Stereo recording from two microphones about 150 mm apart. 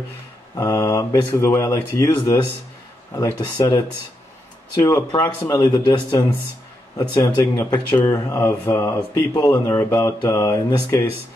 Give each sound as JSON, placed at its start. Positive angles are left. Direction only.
{"t": 0.6, "sound": "speech", "side_deg": 20}
{"t": 4.8, "sound": "speech", "side_deg": 20}
{"t": 7.2, "sound": "speech", "side_deg": 20}